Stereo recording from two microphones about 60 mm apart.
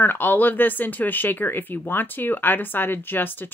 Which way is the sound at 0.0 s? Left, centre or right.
Left.